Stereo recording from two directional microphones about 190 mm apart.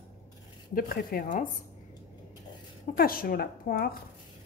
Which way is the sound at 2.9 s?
50° left (ahead or behind).